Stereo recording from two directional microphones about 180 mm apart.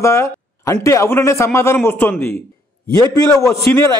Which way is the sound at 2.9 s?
20° left (ahead or behind).